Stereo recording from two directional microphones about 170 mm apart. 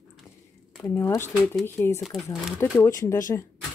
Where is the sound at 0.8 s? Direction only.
15° left (ahead or behind).